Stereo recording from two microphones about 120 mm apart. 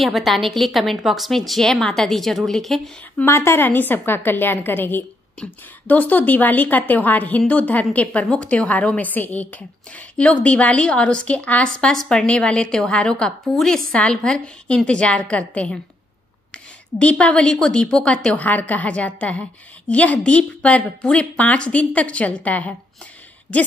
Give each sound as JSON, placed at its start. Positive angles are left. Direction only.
{"t": 0.0, "sound": "a woman's voice", "side_deg": 0}
{"t": 3.2, "sound": "a woman's voice", "side_deg": 20}